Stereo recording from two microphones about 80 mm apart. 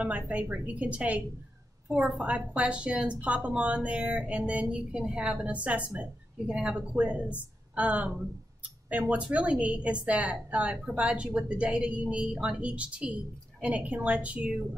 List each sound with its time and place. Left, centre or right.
0.0 s a woman's voice: centre